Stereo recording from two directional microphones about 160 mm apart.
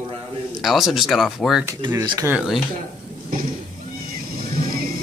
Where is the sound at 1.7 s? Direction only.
20° right (ahead or behind).